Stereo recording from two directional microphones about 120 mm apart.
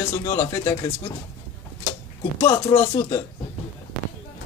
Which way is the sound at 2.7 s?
35° left (ahead or behind).